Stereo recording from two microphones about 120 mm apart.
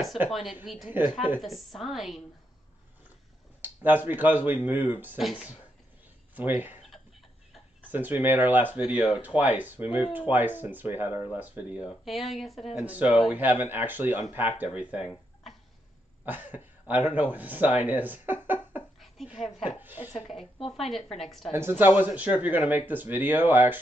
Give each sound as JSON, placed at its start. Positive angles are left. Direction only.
{"t": 0.3, "sound": "a woman's voice", "side_deg": 0}
{"t": 1.0, "sound": "speech", "side_deg": -15}
{"t": 1.4, "sound": "a woman's voice", "side_deg": 0}
{"t": 3.6, "sound": "speech", "side_deg": -15}
{"t": 5.2, "sound": "a woman's voice", "side_deg": 0}
{"t": 6.3, "sound": "speech", "side_deg": -15}
{"t": 7.9, "sound": "speech", "side_deg": -15}
{"t": 11.9, "sound": "a woman's voice", "side_deg": 0}
{"t": 12.7, "sound": "speech", "side_deg": -10}
{"t": 16.3, "sound": "speech", "side_deg": -15}
{"t": 19.2, "sound": "speech", "side_deg": 0}
{"t": 19.8, "sound": "a sound", "side_deg": -15}
{"t": 20.7, "sound": "a woman's voice", "side_deg": 0}
{"t": 21.5, "sound": "speech", "side_deg": -20}